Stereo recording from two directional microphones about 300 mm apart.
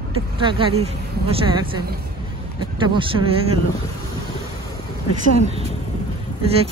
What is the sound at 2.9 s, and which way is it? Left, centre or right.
Speech, centre.